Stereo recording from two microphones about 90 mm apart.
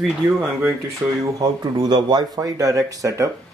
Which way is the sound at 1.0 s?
15° right (ahead or behind).